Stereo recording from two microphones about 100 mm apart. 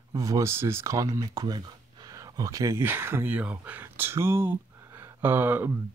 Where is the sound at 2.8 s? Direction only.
20° right (ahead or behind).